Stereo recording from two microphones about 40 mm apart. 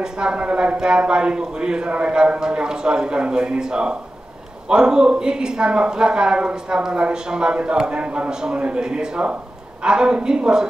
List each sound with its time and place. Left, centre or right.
0.0 s a man's voice: right
8.3 s a man's voice: centre